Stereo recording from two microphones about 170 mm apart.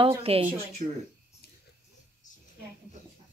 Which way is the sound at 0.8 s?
55° right (ahead or behind).